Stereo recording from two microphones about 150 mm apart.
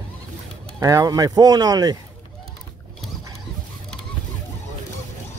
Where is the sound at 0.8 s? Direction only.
25° right (ahead or behind).